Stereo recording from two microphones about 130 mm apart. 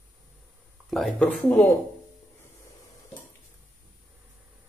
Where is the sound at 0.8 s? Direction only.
Centre (ahead or behind).